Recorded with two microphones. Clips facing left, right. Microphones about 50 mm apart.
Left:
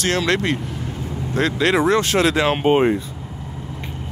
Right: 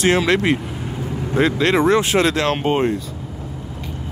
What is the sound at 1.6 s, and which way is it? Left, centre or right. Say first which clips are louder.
Speech: left 1 dB; centre.